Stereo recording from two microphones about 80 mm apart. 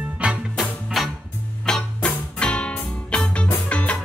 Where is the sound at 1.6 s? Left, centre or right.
Centre.